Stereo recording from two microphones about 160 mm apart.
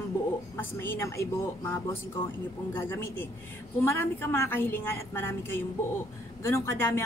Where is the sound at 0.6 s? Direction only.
15° left (ahead or behind).